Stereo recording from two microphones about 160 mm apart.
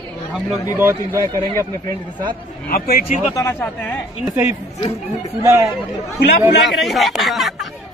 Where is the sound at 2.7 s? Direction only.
70° left (ahead or behind).